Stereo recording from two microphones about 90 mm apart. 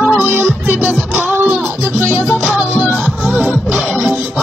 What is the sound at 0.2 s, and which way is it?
Music, 20° right (ahead or behind).